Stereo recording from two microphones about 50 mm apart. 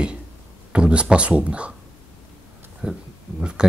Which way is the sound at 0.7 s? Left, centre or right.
Right.